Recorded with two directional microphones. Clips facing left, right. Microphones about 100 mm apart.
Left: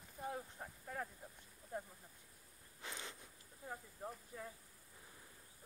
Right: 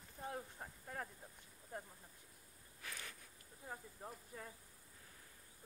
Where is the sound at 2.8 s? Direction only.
25° left (ahead or behind).